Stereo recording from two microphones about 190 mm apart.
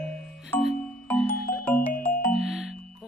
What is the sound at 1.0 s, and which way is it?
Music, 10° left (ahead or behind).